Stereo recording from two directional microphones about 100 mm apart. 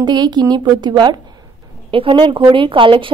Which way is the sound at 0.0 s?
45° right (ahead or behind).